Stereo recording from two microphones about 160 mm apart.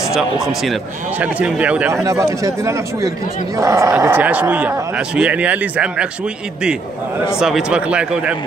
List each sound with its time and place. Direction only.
0.1 s speech: centre (ahead or behind)
2.0 s speech: 20° right (ahead or behind)
7.3 s speech: 5° right (ahead or behind)